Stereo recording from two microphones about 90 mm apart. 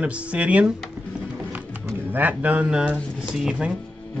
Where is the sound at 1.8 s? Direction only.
20° right (ahead or behind); by 3.8 s 5° right (ahead or behind).